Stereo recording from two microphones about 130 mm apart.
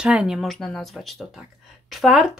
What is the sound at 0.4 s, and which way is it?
Speech, 5° left (ahead or behind).